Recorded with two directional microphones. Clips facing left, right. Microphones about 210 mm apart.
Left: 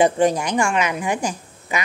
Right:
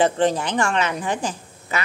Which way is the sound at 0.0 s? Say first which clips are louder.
Left 2 dB; 10° left (ahead or behind).